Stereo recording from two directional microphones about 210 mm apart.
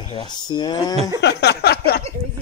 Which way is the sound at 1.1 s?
55° left (ahead or behind).